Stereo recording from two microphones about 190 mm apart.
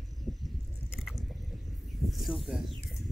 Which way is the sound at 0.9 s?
Centre (ahead or behind).